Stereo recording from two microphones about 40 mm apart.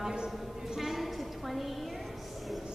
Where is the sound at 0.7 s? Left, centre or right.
Centre.